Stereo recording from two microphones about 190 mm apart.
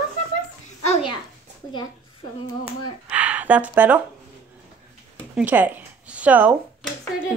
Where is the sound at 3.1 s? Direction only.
10° right (ahead or behind).